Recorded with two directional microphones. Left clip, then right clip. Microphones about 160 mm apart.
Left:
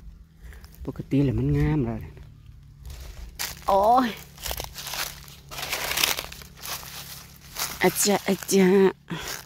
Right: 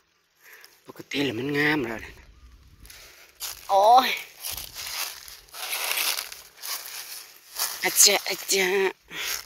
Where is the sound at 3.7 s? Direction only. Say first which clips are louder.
Right 3 dB; 25° left (ahead or behind).